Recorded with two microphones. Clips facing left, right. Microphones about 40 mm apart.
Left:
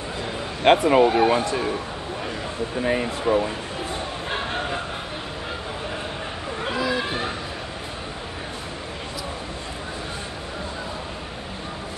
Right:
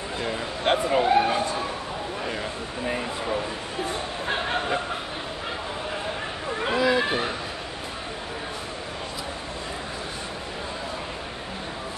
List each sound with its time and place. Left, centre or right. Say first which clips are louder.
0.7 s speech: left 6 dB; left
1.0 s speech: left 2 dB; left
2.8 s speech: left 5 dB; left
6.7 s a sound: right 3 dB; centre